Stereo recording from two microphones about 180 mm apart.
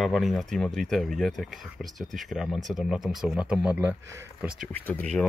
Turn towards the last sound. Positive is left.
turn(degrees=10)  # may be behind; listen again after turning